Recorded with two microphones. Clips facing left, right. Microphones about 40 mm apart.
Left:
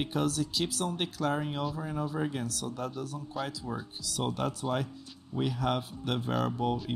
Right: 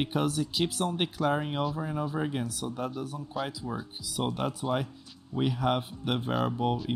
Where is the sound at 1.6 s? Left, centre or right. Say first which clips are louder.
Right 3 dB; centre.